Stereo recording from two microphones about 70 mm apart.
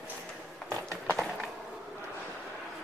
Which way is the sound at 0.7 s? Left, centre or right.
Right.